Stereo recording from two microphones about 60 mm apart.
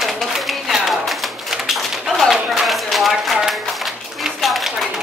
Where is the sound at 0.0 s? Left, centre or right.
Centre.